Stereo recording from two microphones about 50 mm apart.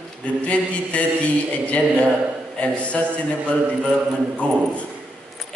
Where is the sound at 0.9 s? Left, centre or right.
Left.